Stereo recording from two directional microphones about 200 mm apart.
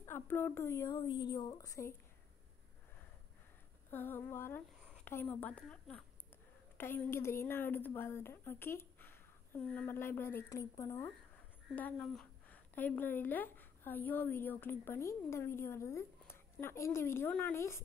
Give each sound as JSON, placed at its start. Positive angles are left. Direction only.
{"t": 0.0, "sound": "speech", "side_deg": 10}
{"t": 0.8, "sound": "speech", "side_deg": 25}
{"t": 3.9, "sound": "a woman's voice", "side_deg": 10}